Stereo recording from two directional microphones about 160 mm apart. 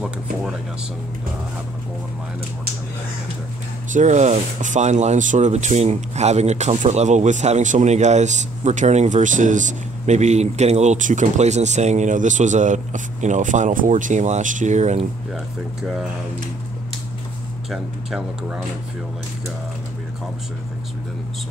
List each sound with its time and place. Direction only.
3.9 s speech: 50° right (ahead or behind)
15.8 s speech: 5° right (ahead or behind)
17.6 s speech: centre (ahead or behind)